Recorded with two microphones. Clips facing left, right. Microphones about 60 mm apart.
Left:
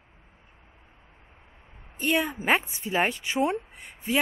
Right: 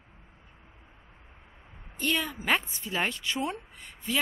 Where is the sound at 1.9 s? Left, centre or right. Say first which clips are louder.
Left 4 dB; centre.